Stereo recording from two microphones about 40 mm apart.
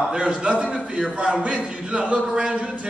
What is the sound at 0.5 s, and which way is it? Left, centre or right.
A man's voice, right.